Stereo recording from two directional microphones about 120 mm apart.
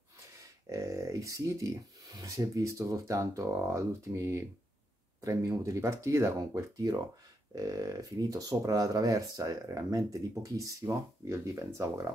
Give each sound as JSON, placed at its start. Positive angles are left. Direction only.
{"t": 0.4, "sound": "speech", "side_deg": -25}